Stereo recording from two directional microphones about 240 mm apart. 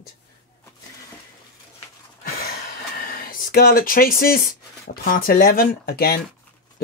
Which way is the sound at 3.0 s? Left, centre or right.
Left.